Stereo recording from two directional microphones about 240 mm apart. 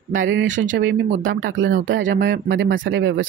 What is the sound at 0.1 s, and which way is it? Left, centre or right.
Speech, right.